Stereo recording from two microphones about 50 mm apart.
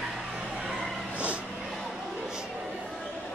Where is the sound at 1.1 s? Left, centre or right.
Right.